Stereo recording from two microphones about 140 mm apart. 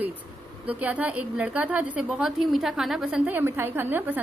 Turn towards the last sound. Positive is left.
turn(degrees=-15)  # may be behind; listen again after turning